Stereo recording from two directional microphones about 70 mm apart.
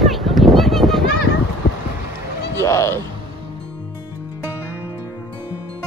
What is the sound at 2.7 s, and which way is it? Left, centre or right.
Speech, left.